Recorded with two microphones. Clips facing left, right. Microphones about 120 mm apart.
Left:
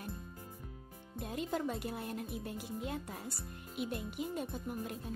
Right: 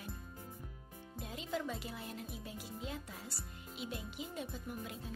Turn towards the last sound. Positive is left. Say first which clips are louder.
# left 4 dB
turn(degrees=50)  # may be behind; listen again after turning